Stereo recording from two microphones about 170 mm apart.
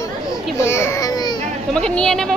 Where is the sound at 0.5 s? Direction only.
15° left (ahead or behind).